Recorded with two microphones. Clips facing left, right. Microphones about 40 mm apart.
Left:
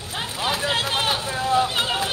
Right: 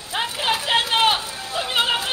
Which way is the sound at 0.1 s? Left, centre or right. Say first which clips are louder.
Right 3 dB; right.